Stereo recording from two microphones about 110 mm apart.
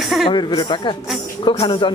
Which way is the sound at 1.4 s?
45° left (ahead or behind).